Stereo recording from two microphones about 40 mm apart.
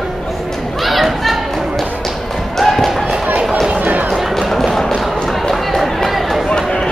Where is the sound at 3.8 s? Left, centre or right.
Right.